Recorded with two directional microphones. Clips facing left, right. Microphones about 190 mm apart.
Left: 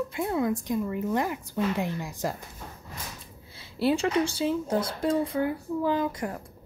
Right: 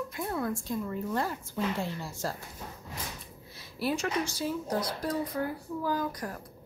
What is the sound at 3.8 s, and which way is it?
Speech, 30° left (ahead or behind).